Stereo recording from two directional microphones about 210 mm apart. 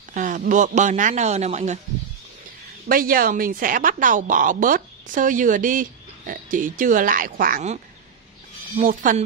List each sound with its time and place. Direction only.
0.1 s a sound: 40° right (ahead or behind)
0.5 s a woman's voice: 35° right (ahead or behind)
2.9 s a woman's voice: 45° right (ahead or behind)